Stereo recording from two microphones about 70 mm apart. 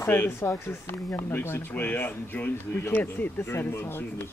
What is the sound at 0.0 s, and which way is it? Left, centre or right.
Speech, left.